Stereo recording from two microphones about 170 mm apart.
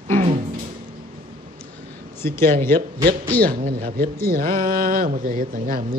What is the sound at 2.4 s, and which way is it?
Speech, 55° right (ahead or behind).